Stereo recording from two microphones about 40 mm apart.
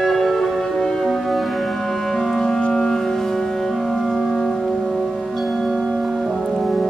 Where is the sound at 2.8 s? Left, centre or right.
Centre.